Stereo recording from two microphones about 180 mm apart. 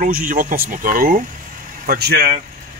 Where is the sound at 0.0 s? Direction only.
50° right (ahead or behind).